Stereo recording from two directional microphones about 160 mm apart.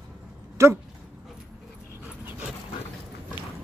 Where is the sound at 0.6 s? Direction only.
15° right (ahead or behind).